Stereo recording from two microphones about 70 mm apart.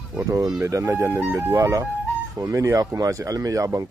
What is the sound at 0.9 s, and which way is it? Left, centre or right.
Speech, right.